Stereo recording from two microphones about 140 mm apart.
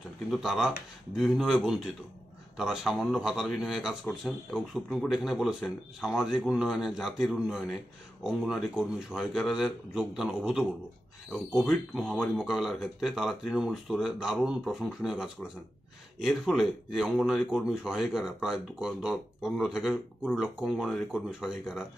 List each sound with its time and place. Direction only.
0.3 s speech: 5° right (ahead or behind)